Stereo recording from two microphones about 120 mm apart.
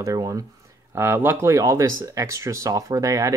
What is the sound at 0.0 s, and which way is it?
Speech, 30° right (ahead or behind).